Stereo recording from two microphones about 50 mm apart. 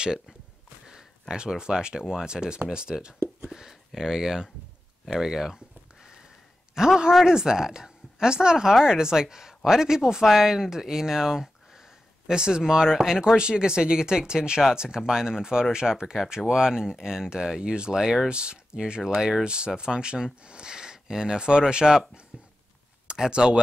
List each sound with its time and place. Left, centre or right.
1.3 s speech: centre
6.7 s a man's voice: centre
18.3 s speech: centre